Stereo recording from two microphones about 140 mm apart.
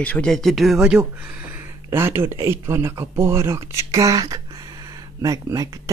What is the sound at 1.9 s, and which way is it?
Speech, 15° right (ahead or behind).